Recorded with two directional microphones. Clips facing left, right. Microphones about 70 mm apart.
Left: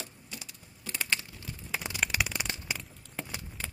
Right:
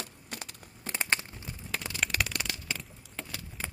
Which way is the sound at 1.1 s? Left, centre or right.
Right.